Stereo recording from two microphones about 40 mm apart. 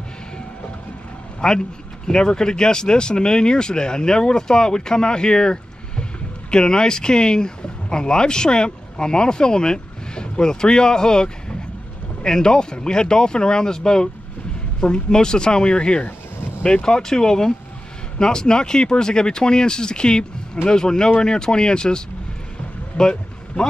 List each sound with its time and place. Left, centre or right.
1.4 s speech: centre
22.9 s vehicle: centre